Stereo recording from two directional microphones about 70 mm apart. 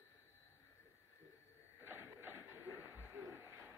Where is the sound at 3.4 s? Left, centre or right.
Right.